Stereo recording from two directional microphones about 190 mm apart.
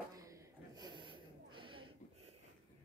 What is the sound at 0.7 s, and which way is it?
Snort, 25° right (ahead or behind).